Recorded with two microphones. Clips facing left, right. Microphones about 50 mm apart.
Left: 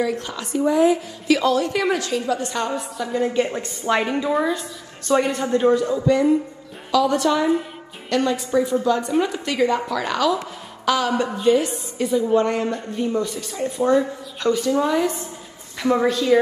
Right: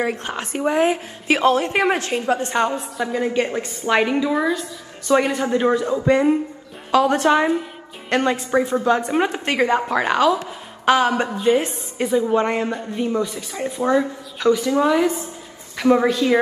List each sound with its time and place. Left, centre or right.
0.0 s a woman's voice: right
4.3 s a woman's voice: centre
5.3 s a woman's voice: right